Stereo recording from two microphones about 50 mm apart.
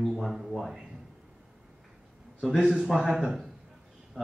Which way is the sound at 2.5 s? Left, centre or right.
Centre.